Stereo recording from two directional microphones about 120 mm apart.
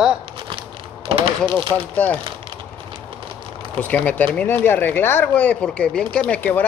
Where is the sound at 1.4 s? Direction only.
45° right (ahead or behind).